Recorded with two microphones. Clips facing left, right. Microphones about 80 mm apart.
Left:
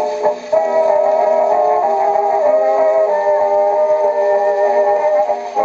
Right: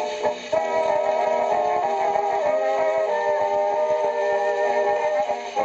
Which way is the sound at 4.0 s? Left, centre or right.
Centre.